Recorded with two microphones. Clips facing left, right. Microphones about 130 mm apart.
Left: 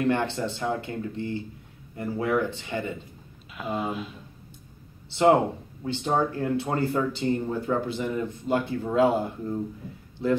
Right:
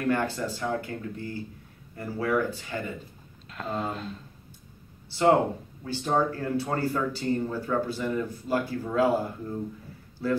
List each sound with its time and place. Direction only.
0.0 s speech: 25° left (ahead or behind)
3.5 s speech: 5° left (ahead or behind)
5.9 s speech: 20° left (ahead or behind)